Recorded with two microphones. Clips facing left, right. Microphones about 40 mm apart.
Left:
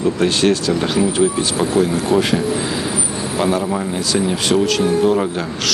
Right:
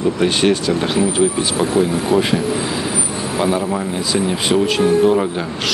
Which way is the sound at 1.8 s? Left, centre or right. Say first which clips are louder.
Even; centre.